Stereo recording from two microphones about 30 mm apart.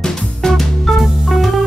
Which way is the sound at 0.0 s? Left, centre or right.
Centre.